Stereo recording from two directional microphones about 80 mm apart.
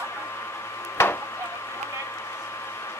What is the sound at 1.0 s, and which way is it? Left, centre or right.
Chop, left.